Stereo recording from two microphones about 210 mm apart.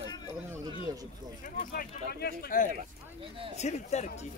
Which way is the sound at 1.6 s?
45° left (ahead or behind).